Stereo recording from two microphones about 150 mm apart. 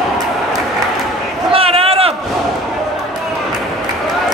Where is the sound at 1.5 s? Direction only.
40° right (ahead or behind).